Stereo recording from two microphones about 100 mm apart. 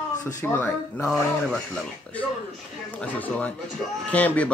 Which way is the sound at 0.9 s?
5° left (ahead or behind).